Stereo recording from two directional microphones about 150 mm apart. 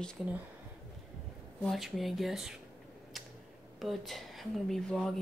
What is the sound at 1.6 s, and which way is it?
Speech, centre (ahead or behind).